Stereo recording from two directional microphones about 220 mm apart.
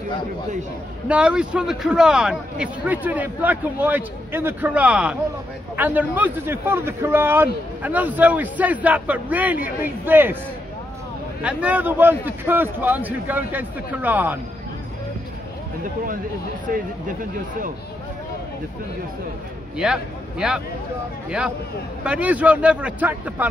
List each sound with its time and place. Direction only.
1.0 s a man's voice: 5° right (ahead or behind)
11.4 s speech: 5° right (ahead or behind)
19.8 s a man's voice: 5° right (ahead or behind)
22.0 s a man's voice: 5° right (ahead or behind)